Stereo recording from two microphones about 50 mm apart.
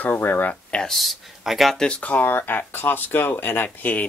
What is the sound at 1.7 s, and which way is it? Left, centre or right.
Speech, centre.